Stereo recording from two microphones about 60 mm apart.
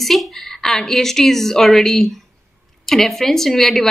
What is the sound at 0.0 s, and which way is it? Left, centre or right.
A woman's voice, centre.